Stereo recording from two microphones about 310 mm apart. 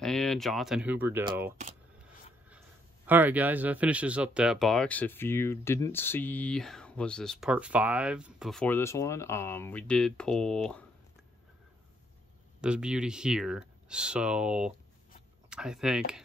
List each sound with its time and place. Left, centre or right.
0.0 s speech: centre
3.1 s speech: centre
12.5 s speech: centre